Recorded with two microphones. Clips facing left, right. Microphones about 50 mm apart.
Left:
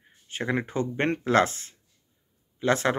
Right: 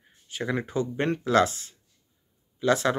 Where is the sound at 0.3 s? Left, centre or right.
Left.